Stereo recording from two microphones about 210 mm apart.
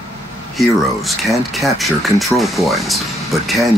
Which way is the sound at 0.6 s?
Centre (ahead or behind).